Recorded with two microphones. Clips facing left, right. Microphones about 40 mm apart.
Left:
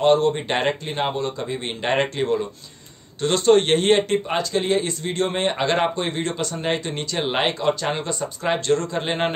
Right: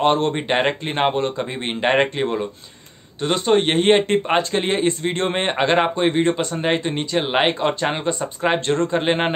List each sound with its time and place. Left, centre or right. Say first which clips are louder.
0.0 s a man's voice: left 1 dB; right
0.5 s speech: right 3 dB; centre
0.8 s a man's voice: right 4 dB; right
3.2 s speech: left 1 dB; centre
4.1 s a man's voice: right 3 dB; right; by 7.5 s centre
7.8 s speech: right 3 dB; right